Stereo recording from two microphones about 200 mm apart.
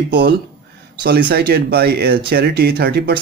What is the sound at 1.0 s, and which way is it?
Speech, 55° right (ahead or behind).